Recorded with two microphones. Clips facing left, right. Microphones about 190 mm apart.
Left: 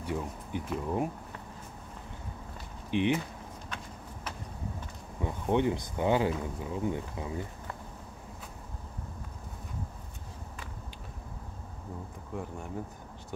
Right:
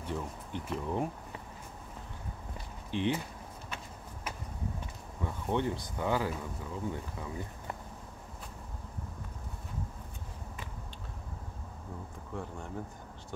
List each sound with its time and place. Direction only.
0.0 s speech: 10° left (ahead or behind)
2.9 s speech: 15° left (ahead or behind)
3.7 s a sound: 10° right (ahead or behind)
5.2 s speech: 15° left (ahead or behind)